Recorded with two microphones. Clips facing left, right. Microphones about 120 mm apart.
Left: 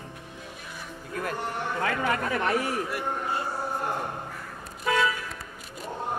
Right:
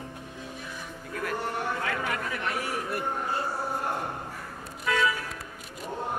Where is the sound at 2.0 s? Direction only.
45° left (ahead or behind).